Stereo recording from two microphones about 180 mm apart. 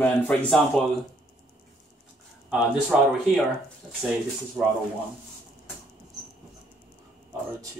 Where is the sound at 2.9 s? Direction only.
Centre (ahead or behind).